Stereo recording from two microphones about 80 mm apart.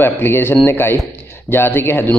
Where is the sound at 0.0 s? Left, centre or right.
Left.